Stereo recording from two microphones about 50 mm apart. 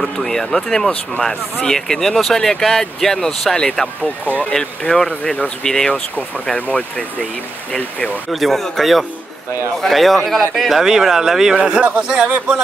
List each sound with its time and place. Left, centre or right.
0.0 s speech: centre
4.3 s speech: left
4.6 s speech: centre
8.3 s speech: centre